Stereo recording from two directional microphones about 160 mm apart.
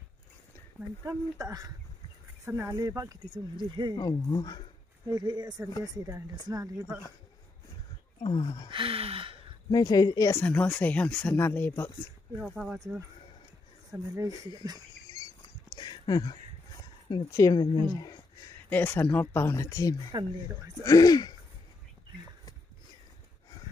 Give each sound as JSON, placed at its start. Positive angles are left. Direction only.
{"t": 1.0, "sound": "speech", "side_deg": -20}
{"t": 3.9, "sound": "speech", "side_deg": 25}
{"t": 5.1, "sound": "speech", "side_deg": -25}
{"t": 8.2, "sound": "speech", "side_deg": 30}
{"t": 8.6, "sound": "a sound", "side_deg": -35}
{"t": 9.7, "sound": "speech", "side_deg": 25}
{"t": 10.4, "sound": "speech", "side_deg": 10}
{"t": 12.4, "sound": "speech", "side_deg": 0}
{"t": 13.9, "sound": "speech", "side_deg": -20}
{"t": 15.0, "sound": "rodents", "side_deg": 25}
{"t": 17.3, "sound": "speech", "side_deg": 20}
{"t": 18.7, "sound": "speech", "side_deg": 10}
{"t": 20.1, "sound": "speech", "side_deg": -25}
{"t": 20.8, "sound": "speech", "side_deg": 20}